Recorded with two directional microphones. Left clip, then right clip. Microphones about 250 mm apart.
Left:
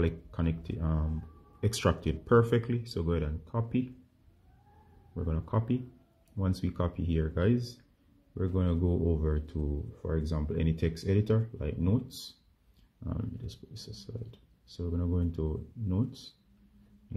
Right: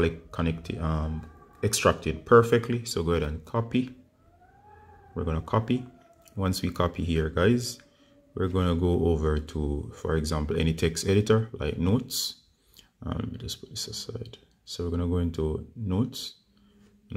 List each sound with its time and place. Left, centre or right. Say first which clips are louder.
0.0 s speech: right 6 dB; centre
5.1 s speech: right 7 dB; centre